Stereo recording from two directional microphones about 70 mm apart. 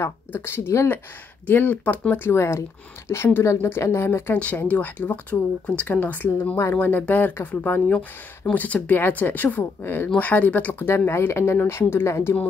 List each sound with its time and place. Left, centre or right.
0.0 s speech: left
4.6 s speech: left